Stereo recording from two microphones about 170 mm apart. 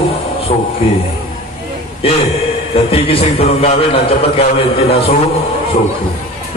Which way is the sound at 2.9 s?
35° left (ahead or behind).